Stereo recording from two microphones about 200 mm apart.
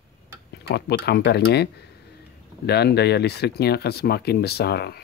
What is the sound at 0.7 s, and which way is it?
Speech, 55° left (ahead or behind).